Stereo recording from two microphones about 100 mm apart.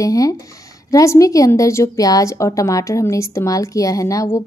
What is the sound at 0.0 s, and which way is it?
A woman's voice, 35° left (ahead or behind).